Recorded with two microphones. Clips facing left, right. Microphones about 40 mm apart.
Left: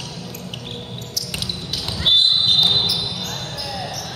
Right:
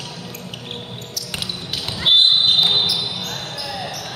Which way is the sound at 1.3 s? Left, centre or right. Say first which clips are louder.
Right 1 dB; centre.